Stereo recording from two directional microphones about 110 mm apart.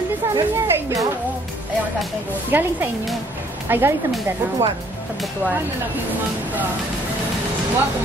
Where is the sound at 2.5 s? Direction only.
20° right (ahead or behind).